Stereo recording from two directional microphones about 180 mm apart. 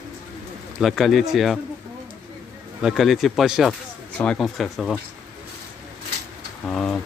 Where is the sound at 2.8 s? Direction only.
Centre (ahead or behind).